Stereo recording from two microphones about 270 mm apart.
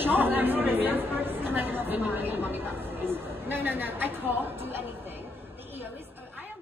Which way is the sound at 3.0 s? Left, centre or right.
Centre.